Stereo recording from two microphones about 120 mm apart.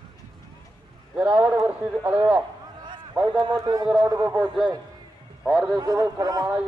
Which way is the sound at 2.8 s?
40° right (ahead or behind).